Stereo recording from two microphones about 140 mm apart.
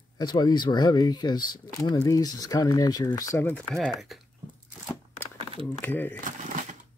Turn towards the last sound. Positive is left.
turn(degrees=-65)  # may be behind; listen again after turning